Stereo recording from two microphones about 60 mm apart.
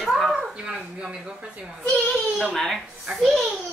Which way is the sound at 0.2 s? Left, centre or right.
Centre.